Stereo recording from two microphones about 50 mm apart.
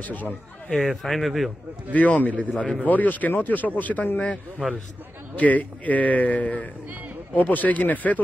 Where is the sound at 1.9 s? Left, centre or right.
Left.